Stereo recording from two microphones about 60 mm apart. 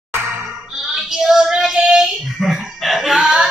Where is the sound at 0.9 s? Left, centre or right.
Centre.